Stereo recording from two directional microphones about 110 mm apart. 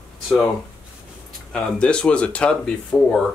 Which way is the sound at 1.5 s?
10° left (ahead or behind).